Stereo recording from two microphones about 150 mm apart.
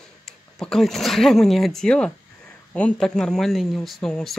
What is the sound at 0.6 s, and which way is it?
Speech, 5° left (ahead or behind).